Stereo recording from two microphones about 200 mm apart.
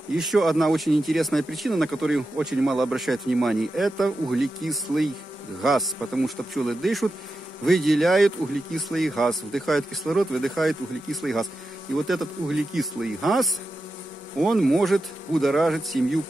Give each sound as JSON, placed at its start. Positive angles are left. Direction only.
{"t": 0.1, "sound": "speech", "side_deg": 0}